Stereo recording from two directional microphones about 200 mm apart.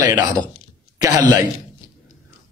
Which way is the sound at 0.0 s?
20° right (ahead or behind).